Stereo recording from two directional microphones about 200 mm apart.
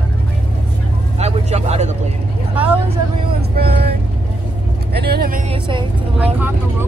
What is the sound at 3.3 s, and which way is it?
Vehicle, 50° right (ahead or behind).